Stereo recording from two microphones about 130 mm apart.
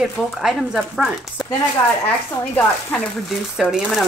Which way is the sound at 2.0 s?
10° left (ahead or behind).